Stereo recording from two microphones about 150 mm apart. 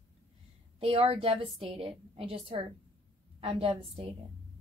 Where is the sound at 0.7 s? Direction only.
40° right (ahead or behind).